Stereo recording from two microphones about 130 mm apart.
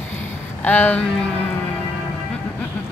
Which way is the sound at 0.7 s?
10° left (ahead or behind).